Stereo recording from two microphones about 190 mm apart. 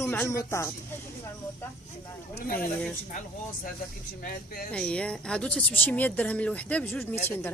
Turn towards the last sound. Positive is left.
turn(degrees=10)  # may be behind; listen again after turning